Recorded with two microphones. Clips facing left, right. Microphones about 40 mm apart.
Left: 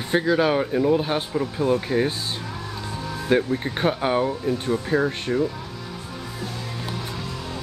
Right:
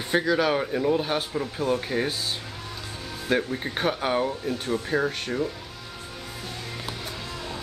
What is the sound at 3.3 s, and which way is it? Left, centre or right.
Speech, centre.